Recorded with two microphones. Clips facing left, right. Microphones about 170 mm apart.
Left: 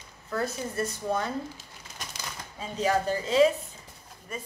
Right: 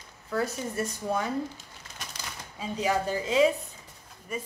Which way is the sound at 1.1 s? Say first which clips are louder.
Even; 5° right (ahead or behind).